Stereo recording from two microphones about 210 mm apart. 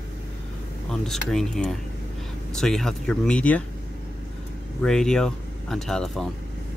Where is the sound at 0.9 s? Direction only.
Centre (ahead or behind).